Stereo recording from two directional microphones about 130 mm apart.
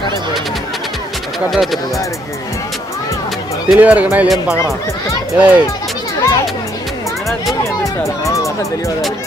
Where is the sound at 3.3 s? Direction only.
5° right (ahead or behind).